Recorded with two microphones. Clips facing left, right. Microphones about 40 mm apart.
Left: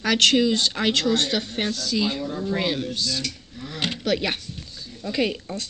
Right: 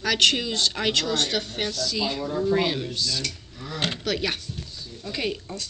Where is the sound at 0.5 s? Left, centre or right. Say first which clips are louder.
Left 3 dB; centre.